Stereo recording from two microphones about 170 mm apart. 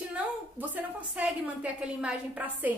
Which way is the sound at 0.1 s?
10° right (ahead or behind).